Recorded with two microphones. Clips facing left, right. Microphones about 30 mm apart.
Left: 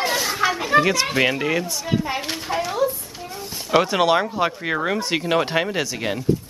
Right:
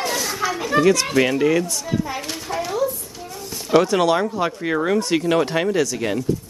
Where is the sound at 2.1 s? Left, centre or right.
Left.